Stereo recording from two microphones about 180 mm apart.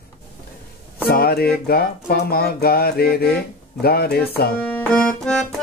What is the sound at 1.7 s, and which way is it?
Mantra, 60° left (ahead or behind).